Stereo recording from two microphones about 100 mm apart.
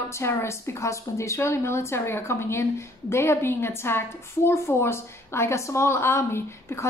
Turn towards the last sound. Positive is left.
turn(degrees=25)  # may be behind; listen again after turning